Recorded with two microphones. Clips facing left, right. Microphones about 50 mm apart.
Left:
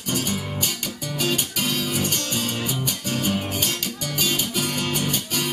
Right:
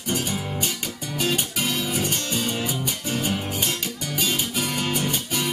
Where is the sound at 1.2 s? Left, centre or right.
Centre.